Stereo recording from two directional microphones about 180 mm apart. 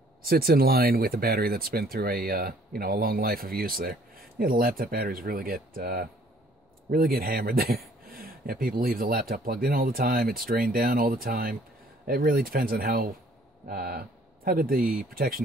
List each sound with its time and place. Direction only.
0.2 s speech: 55° right (ahead or behind)